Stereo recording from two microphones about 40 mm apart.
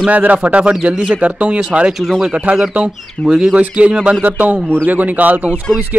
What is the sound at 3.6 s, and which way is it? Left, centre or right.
Speech, right.